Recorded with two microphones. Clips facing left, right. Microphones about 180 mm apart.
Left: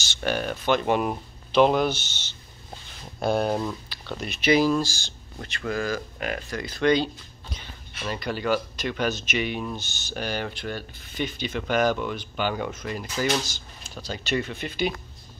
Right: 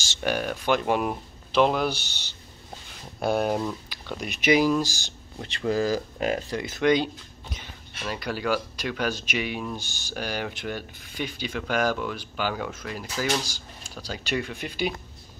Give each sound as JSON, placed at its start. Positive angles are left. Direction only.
{"t": 0.2, "sound": "speech", "side_deg": -10}
{"t": 3.2, "sound": "speech", "side_deg": -10}
{"t": 5.7, "sound": "speech", "side_deg": -35}
{"t": 6.8, "sound": "speech", "side_deg": -15}